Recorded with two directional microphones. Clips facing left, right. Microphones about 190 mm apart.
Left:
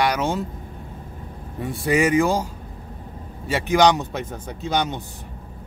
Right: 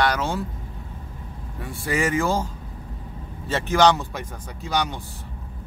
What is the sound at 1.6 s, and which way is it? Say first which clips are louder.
A man's voice: left 5 dB; 20° left (ahead or behind).